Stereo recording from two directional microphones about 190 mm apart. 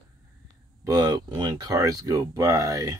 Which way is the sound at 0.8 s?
20° right (ahead or behind).